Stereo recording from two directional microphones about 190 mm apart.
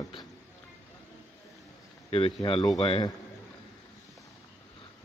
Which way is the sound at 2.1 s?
30° left (ahead or behind).